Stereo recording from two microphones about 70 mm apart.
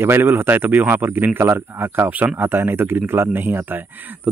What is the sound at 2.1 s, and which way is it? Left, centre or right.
Speech, right.